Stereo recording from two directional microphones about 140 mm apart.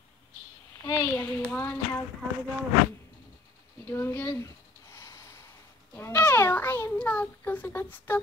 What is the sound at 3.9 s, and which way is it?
Speech, 15° left (ahead or behind).